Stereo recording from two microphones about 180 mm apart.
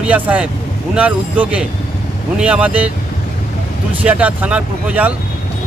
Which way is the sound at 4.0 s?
10° right (ahead or behind).